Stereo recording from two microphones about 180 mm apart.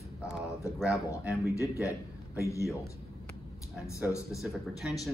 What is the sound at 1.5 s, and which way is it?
A man's voice, 15° left (ahead or behind).